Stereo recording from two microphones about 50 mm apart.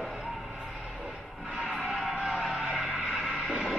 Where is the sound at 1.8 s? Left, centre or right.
Centre.